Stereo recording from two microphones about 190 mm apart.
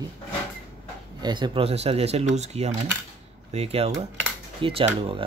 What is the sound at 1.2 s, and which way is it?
Speech, 25° right (ahead or behind).